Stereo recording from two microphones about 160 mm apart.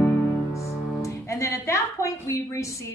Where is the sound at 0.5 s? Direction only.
20° left (ahead or behind).